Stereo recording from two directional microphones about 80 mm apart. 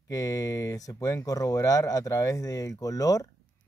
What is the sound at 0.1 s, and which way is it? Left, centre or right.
Speech, left.